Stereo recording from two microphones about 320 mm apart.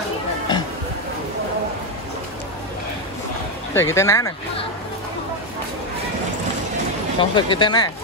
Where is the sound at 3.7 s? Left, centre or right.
Centre.